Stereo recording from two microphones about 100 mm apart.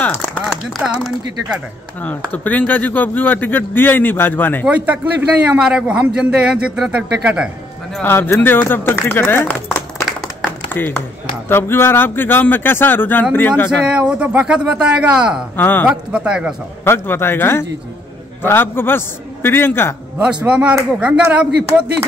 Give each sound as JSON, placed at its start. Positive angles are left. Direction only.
{"t": 0.0, "sound": "a sound", "side_deg": 15}
{"t": 0.5, "sound": "speech", "side_deg": 0}
{"t": 2.0, "sound": "speech", "side_deg": 15}
{"t": 4.6, "sound": "a man's voice", "side_deg": -15}
{"t": 8.0, "sound": "speech", "side_deg": 20}
{"t": 13.8, "sound": "a man's voice", "side_deg": -10}
{"t": 15.5, "sound": "speech", "side_deg": 20}
{"t": 16.1, "sound": "a man's voice", "side_deg": -10}
{"t": 16.8, "sound": "speech", "side_deg": 25}
{"t": 20.4, "sound": "a man's voice", "side_deg": -10}